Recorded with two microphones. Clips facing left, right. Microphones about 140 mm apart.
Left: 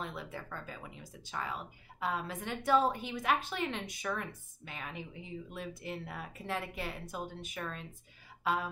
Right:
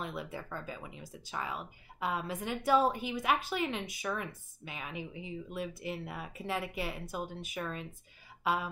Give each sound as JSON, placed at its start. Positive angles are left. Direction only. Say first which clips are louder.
{"t": 0.0, "sound": "speech", "louder": "right 2 dB", "side_deg": -10}